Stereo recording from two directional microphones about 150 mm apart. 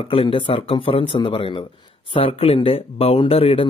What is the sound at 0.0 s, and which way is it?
Speech, 35° left (ahead or behind).